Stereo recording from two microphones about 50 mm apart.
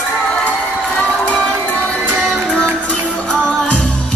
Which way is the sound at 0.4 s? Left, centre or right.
Left.